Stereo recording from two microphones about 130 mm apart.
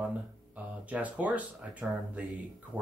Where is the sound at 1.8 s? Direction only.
20° right (ahead or behind).